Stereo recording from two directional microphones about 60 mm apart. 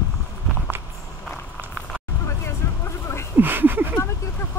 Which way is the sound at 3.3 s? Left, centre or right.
Right.